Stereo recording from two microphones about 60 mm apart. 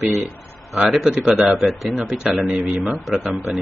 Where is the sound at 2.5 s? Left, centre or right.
Right.